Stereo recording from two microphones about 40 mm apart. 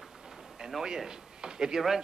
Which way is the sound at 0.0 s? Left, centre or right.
Centre.